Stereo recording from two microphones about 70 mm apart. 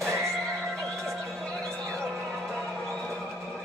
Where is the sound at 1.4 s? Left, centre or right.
Centre.